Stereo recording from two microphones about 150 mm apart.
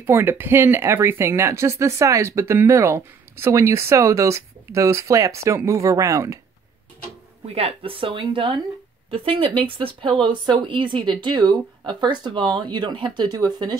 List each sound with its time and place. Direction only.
0.0 s speech: 15° right (ahead or behind)
7.4 s speech: 40° right (ahead or behind)